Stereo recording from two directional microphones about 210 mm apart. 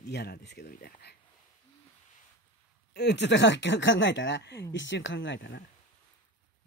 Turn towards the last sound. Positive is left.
turn(degrees=60)  # may be behind; listen again after turning